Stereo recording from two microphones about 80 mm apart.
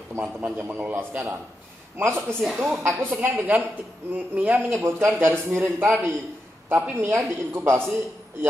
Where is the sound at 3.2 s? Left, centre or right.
Right.